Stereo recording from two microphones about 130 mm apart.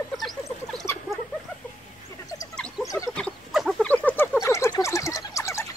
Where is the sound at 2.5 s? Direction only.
5° left (ahead or behind).